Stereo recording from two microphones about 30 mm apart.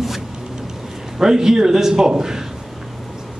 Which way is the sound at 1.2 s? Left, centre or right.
Centre.